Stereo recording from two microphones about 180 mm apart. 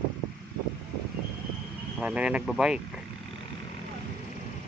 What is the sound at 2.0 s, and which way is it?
Speech, 5° right (ahead or behind).